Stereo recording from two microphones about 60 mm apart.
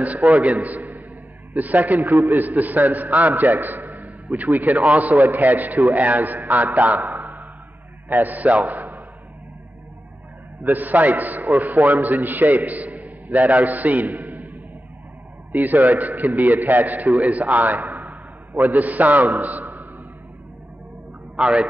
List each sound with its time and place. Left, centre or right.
0.0 s a man's voice: right
10.6 s a man's voice: right
15.6 s a man's voice: right
21.4 s speech: centre